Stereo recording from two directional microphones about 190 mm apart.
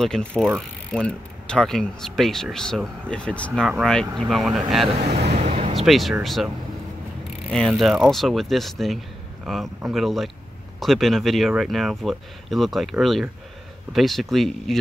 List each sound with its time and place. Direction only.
0.0 s speech: 5° left (ahead or behind)
5.0 s vehicle: 35° right (ahead or behind)
5.8 s speech: centre (ahead or behind)
7.5 s speech: centre (ahead or behind)